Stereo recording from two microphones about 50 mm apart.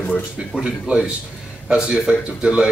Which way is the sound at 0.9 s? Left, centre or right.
Right.